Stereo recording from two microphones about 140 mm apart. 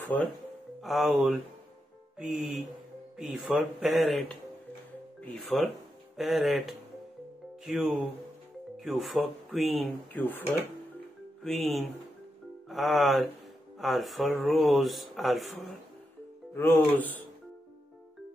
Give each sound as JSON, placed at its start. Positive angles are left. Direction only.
{"t": 0.7, "sound": "speech", "side_deg": 0}
{"t": 10.1, "sound": "speech", "side_deg": 10}
{"t": 11.4, "sound": "speech", "side_deg": 0}
{"t": 16.5, "sound": "speech", "side_deg": 15}